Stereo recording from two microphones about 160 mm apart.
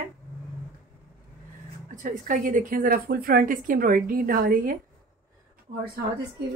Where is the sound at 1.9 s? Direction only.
55° right (ahead or behind).